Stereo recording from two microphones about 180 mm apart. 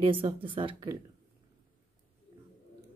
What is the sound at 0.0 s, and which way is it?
Speech, 30° right (ahead or behind).